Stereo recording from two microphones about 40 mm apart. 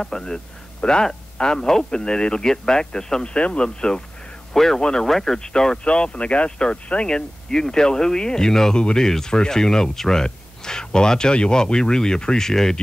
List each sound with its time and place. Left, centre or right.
0.0 s a man's voice: centre
3.3 s speech: left
4.6 s speech: centre